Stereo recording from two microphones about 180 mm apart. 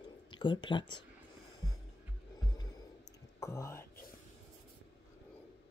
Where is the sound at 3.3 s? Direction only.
15° left (ahead or behind).